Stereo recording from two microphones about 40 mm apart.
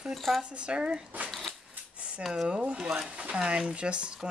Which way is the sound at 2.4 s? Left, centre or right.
Right.